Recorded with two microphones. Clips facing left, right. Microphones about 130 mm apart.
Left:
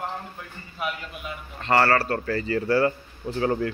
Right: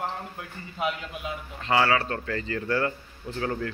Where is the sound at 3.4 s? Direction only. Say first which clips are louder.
Left 5 dB; 20° left (ahead or behind).